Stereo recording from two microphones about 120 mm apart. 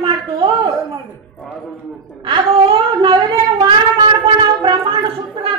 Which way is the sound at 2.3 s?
40° right (ahead or behind).